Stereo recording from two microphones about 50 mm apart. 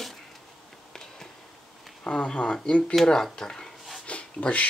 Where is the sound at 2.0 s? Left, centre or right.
Centre.